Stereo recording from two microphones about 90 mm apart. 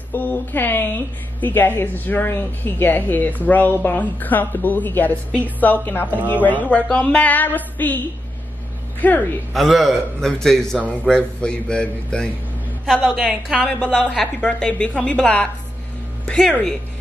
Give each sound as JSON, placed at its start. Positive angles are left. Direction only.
{"t": 0.1, "sound": "a woman's voice", "side_deg": 20}
{"t": 9.0, "sound": "a woman's voice", "side_deg": 20}
{"t": 9.5, "sound": "a man's voice", "side_deg": 0}
{"t": 13.6, "sound": "a woman's voice", "side_deg": 15}